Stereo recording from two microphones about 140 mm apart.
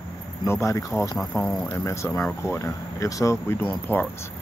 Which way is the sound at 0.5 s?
20° left (ahead or behind).